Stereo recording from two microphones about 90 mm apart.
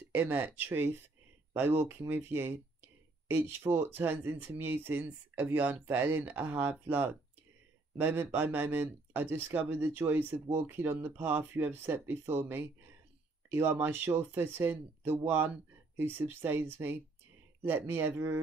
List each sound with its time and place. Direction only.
0.1 s speech: 20° right (ahead or behind)